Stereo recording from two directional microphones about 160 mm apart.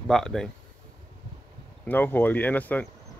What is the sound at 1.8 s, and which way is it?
Speech, 10° left (ahead or behind).